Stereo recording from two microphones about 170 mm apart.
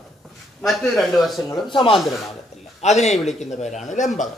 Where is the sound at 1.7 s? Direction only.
30° left (ahead or behind).